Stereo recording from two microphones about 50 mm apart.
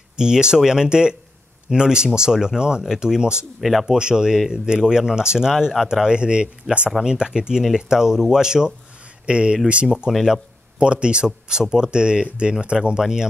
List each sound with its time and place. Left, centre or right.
0.2 s speech: centre
10.1 s speech: centre
10.8 s speech: right